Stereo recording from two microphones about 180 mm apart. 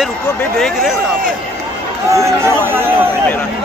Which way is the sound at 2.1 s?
15° right (ahead or behind).